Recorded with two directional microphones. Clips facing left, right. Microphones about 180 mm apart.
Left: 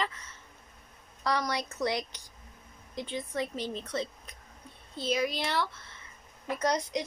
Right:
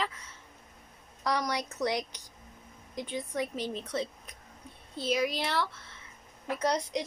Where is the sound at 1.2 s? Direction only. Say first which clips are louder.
Even; 15° right (ahead or behind).